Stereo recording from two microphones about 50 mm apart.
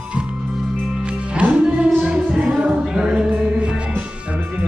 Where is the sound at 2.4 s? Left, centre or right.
Centre.